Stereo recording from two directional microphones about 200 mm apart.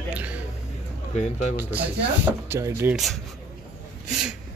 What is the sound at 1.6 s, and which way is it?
Speech, 10° right (ahead or behind).